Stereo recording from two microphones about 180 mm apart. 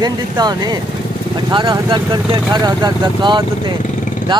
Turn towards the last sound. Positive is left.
turn(degrees=-25)  # may be behind; listen again after turning